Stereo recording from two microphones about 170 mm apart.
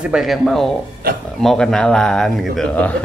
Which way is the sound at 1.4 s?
5° left (ahead or behind).